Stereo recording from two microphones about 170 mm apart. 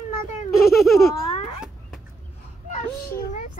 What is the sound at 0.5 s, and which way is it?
Baby laughter, 65° left (ahead or behind).